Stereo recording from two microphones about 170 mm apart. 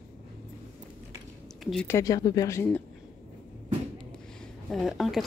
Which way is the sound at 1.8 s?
20° left (ahead or behind).